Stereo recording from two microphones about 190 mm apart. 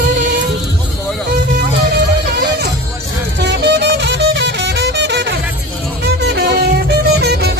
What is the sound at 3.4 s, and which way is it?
Music, 65° right (ahead or behind).